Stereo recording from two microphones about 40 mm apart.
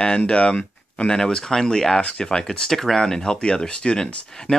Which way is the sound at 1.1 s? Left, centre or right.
Centre.